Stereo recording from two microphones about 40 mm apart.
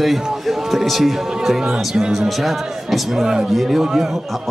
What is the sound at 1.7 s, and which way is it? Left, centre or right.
Speech, centre.